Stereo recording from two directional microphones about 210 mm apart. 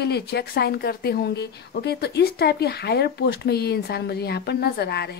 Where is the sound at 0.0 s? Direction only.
50° left (ahead or behind).